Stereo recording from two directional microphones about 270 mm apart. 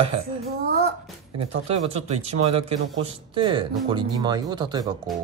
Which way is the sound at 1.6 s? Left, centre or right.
Right.